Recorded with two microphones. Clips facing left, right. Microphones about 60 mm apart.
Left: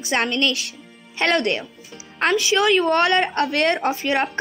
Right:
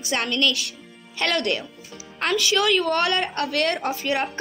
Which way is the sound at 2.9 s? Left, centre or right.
Left.